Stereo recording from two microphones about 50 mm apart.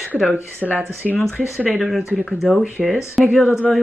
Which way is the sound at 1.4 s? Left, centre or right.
Right.